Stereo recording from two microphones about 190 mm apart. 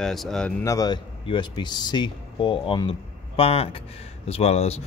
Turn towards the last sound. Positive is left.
turn(degrees=35)  # may be behind; listen again after turning